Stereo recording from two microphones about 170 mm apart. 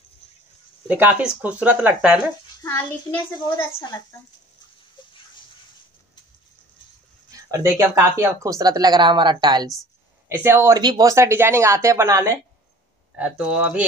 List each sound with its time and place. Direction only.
0.8 s speech: 10° right (ahead or behind)
7.2 s speech: 20° right (ahead or behind)
10.2 s speech: 15° right (ahead or behind)